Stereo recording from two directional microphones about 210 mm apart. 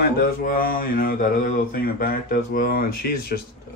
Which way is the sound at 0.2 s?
40° left (ahead or behind).